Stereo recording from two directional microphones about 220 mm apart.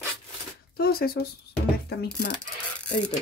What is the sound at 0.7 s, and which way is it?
Speech, 45° left (ahead or behind).